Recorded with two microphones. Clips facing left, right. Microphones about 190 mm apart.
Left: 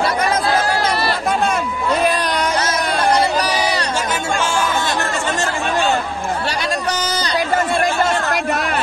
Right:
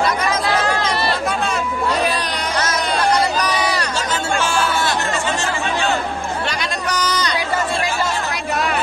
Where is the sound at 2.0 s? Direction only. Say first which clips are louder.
Left 4 dB; 50° left (ahead or behind).